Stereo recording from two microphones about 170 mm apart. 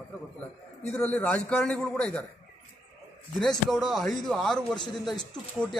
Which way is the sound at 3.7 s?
Centre (ahead or behind).